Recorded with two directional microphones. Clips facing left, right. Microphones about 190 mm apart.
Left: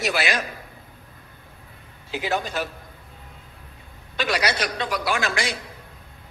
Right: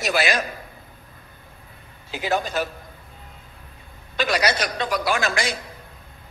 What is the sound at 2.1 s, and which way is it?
Speech, 40° right (ahead or behind).